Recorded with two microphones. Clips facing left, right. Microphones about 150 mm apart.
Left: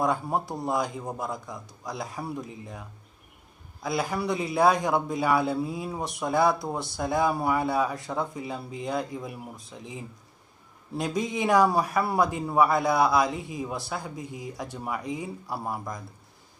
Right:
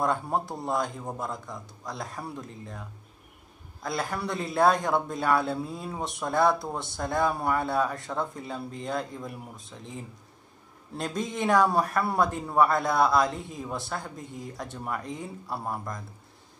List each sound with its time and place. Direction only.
0.0 s a man's voice: centre (ahead or behind)
3.8 s a man's voice: centre (ahead or behind)